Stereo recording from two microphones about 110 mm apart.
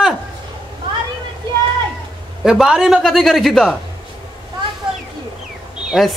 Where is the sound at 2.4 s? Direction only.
5° right (ahead or behind).